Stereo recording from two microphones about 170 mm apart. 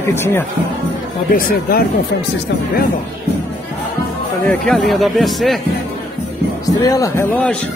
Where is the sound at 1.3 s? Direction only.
60° left (ahead or behind).